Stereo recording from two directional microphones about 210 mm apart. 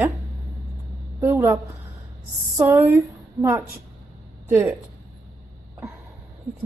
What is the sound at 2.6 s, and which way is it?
Speech, 10° right (ahead or behind).